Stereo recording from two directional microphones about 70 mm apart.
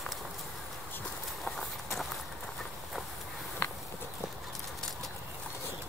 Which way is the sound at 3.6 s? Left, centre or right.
Left.